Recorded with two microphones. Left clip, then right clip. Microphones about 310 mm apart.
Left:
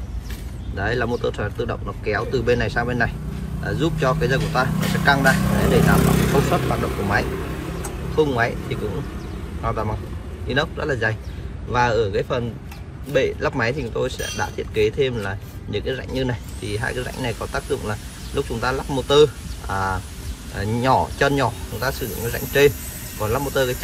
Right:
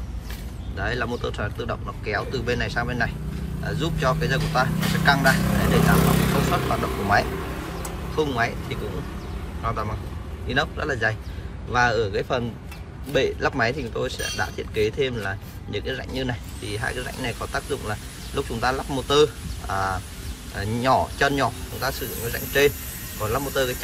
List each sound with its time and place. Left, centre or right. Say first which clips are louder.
0.7 s speech: left 4 dB; centre
6.1 s speech: left 3 dB; right
8.2 s speech: left 4 dB; centre